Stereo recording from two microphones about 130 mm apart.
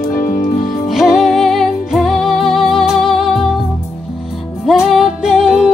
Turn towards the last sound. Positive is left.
turn(degrees=-5)  # may be behind; listen again after turning